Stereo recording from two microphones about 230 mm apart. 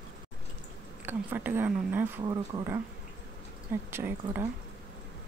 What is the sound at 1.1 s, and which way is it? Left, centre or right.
Speech, centre.